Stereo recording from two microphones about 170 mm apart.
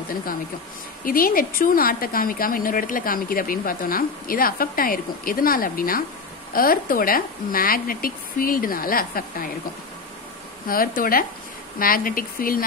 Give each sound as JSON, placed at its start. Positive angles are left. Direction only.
{"t": 0.1, "sound": "a woman's voice", "side_deg": 55}
{"t": 10.7, "sound": "a woman's voice", "side_deg": 55}